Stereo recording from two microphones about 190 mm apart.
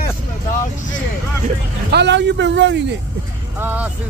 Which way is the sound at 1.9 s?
65° right (ahead or behind).